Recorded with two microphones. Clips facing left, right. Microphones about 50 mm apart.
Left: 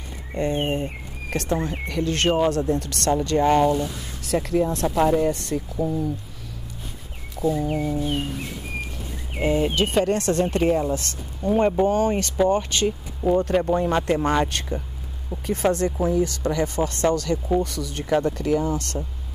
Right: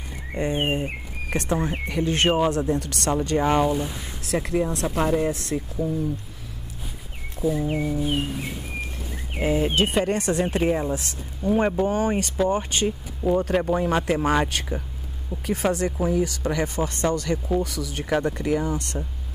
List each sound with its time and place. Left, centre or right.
0.3 s speech: centre
5.8 s speech: left
7.4 s a sound: centre
8.0 s speech: centre
9.4 s speech: centre
12.8 s speech: centre; by 17.4 s right
17.6 s speech: centre
18.2 s speech: right